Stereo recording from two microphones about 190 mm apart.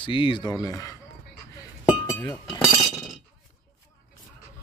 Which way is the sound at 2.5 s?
20° left (ahead or behind).